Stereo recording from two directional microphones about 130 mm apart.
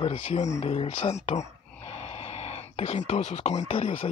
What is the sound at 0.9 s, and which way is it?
Speech, 60° left (ahead or behind).